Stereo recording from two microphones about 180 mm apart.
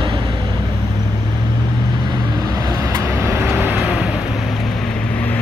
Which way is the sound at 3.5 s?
5° right (ahead or behind).